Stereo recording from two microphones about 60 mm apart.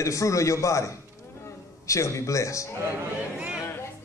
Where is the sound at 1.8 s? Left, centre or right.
Left.